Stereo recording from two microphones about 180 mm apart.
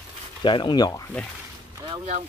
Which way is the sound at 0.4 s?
25° left (ahead or behind).